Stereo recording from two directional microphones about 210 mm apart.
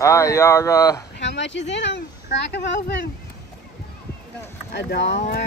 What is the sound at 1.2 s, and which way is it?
Speech, 55° left (ahead or behind).